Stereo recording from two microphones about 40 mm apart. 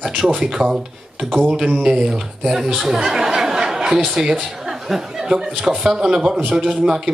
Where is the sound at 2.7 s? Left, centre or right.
Centre.